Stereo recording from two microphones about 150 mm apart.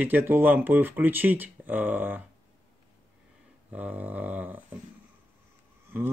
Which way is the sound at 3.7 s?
10° right (ahead or behind).